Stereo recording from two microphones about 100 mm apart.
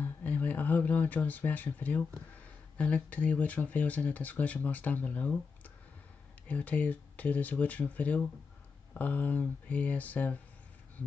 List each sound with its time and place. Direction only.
0.0 s a sound: 15° left (ahead or behind)
2.8 s speech: 15° left (ahead or behind)
6.4 s speech: 15° left (ahead or behind)